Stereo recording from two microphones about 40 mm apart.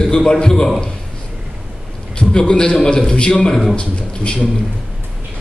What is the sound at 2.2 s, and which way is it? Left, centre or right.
A man's voice, left.